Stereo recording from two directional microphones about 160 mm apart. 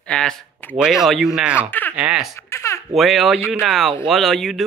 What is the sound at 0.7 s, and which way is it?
Speech, 5° right (ahead or behind).